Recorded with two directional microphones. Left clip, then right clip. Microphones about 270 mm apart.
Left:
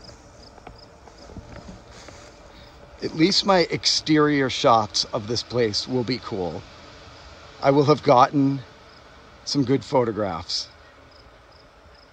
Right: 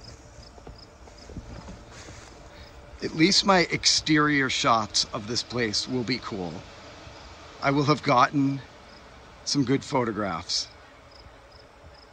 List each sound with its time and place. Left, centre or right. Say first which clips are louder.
3.0 s speech: left 1 dB; centre
7.6 s speech: left 6 dB; centre